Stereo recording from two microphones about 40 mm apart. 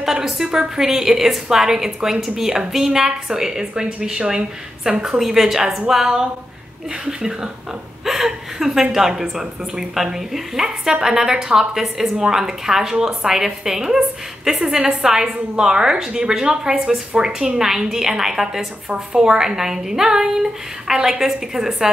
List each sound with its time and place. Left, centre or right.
0.0 s a woman's voice: centre